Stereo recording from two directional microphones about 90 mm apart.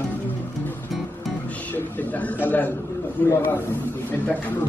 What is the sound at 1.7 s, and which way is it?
A man's voice, 20° left (ahead or behind).